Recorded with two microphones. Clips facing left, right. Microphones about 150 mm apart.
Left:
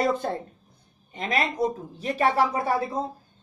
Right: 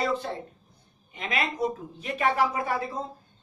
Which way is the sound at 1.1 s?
40° left (ahead or behind).